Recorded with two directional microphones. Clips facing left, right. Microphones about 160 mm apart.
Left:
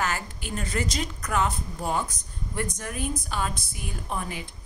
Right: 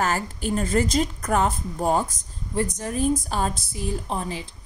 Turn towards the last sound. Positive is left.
turn(degrees=-30)  # may be behind; listen again after turning